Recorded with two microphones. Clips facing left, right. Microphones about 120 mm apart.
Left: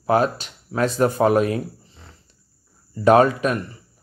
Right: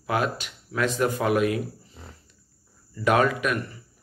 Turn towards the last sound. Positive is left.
turn(degrees=35)  # may be behind; listen again after turning